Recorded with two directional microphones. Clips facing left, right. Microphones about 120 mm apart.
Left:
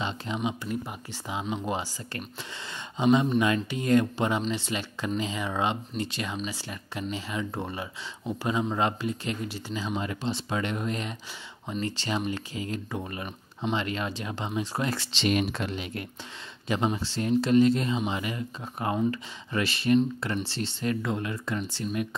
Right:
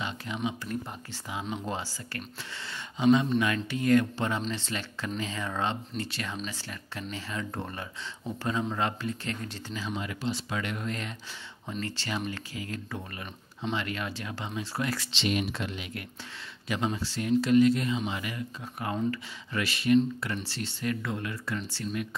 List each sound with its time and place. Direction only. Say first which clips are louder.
0.0 s a sound: left 3 dB; 25° left (ahead or behind)
1.4 s speech: left 3 dB; 5° left (ahead or behind)
1.7 s speech: left 3 dB; 15° left (ahead or behind)
9.8 s speech: left 2 dB; 30° left (ahead or behind)
15.0 s speech: left 4 dB; 45° left (ahead or behind); by 22.0 s 20° left (ahead or behind)